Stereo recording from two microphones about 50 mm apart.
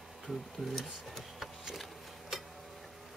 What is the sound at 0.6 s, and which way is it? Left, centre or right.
Speech, centre.